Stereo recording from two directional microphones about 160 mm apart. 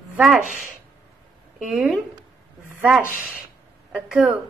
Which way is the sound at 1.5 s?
Centre (ahead or behind).